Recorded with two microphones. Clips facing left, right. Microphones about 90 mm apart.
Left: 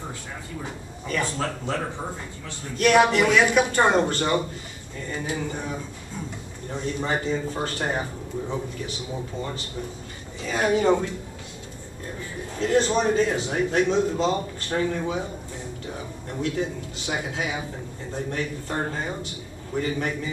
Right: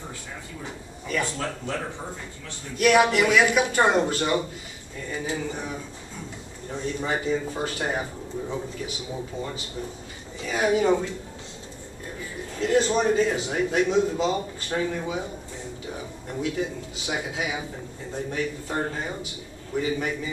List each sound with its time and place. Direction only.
1.2 s speech: 20° left (ahead or behind)
2.8 s a man's voice: 5° right (ahead or behind)
5.5 s a man's voice: 5° right (ahead or behind)
12.5 s a man's voice: centre (ahead or behind)